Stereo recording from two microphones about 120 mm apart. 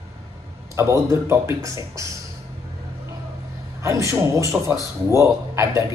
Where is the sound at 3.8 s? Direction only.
25° right (ahead or behind).